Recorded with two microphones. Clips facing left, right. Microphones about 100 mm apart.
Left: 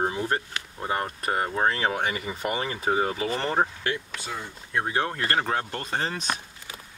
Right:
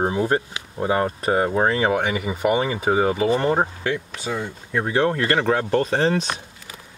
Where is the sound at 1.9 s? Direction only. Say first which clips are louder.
Right 6 dB; 55° right (ahead or behind).